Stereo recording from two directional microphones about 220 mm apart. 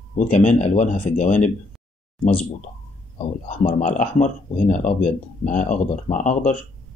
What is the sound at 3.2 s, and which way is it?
Speech, 30° left (ahead or behind).